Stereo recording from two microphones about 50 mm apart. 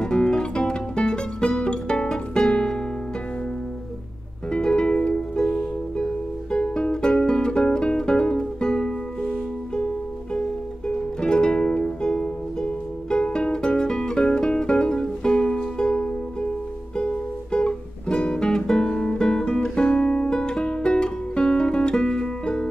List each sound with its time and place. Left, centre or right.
0.0 s music: centre
4.5 s music: centre
11.1 s music: centre
16.9 s guitar: centre
20.2 s music: centre